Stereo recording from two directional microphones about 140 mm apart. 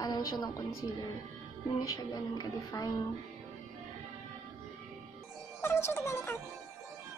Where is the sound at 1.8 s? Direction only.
25° left (ahead or behind).